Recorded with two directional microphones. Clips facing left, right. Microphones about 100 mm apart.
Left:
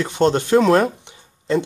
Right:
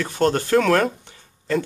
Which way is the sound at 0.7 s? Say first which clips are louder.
Left 3 dB; 15° left (ahead or behind).